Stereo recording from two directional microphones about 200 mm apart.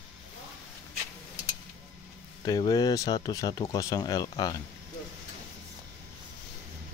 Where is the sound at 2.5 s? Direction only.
20° left (ahead or behind).